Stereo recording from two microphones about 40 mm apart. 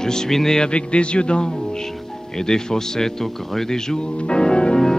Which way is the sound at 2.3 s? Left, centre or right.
Centre.